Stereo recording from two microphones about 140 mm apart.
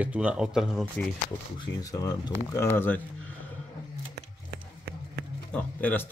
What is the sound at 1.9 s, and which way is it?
Speech, 25° left (ahead or behind).